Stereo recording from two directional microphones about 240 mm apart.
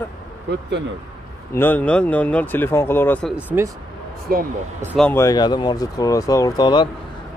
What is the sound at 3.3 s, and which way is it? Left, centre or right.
Speech, centre.